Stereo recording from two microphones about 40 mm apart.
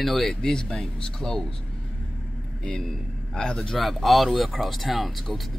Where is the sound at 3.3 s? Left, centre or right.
Centre.